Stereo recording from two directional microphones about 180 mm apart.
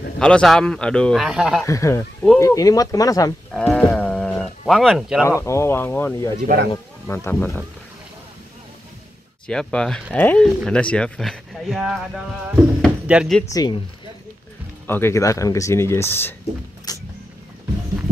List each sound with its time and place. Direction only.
0.2 s speech: 5° left (ahead or behind)
1.7 s speech: 15° left (ahead or behind)
3.5 s speech: 5° left (ahead or behind)
3.9 s a sound: 5° left (ahead or behind)
5.4 s speech: 15° left (ahead or behind)
6.4 s speech: 55° right (ahead or behind)
7.1 s speech: 10° left (ahead or behind)
9.5 s speech: 5° left (ahead or behind)
13.5 s speech: 20° left (ahead or behind)
14.9 s speech: 15° left (ahead or behind)
16.9 s vehicle: 20° left (ahead or behind)